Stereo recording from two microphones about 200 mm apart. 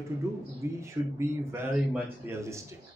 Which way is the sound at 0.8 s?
10° right (ahead or behind).